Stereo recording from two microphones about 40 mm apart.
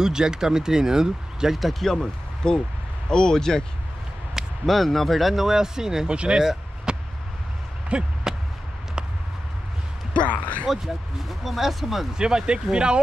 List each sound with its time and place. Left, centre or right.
0.0 s speech: centre
1.6 s speech: centre
2.0 s speech: centre
4.6 s speech: centre
6.0 s speech: right
6.9 s a sound: right
10.3 s speech: left
11.2 s speech: centre
12.2 s speech: centre